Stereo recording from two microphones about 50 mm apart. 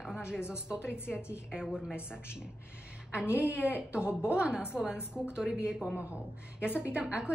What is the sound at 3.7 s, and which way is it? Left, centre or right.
A woman's voice, right.